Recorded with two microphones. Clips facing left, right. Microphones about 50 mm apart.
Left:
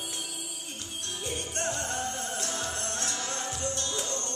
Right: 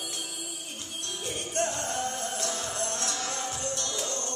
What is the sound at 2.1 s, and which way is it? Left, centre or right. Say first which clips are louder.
Music: right 1 dB; left.